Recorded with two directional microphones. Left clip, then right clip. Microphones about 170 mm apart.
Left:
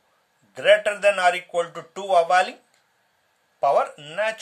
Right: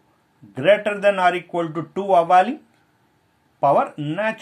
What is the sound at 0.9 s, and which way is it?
Speech, 30° left (ahead or behind).